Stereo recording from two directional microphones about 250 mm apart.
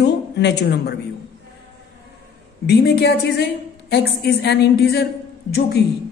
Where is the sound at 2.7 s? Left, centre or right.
Left.